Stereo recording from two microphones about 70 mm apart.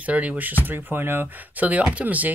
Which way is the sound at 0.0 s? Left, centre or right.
Right.